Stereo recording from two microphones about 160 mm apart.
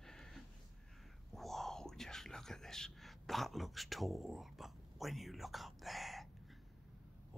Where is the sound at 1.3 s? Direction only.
Centre (ahead or behind).